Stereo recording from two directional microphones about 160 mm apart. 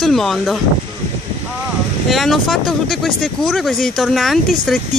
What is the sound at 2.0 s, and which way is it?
Speech, centre (ahead or behind).